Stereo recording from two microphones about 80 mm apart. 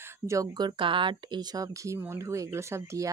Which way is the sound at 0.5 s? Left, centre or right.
Right.